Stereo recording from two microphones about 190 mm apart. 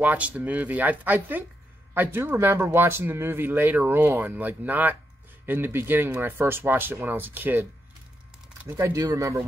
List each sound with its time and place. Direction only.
0.0 s speech: 10° right (ahead or behind)
8.6 s speech: 15° right (ahead or behind)